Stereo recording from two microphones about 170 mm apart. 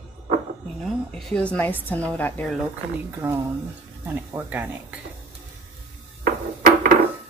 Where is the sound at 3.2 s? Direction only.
15° right (ahead or behind).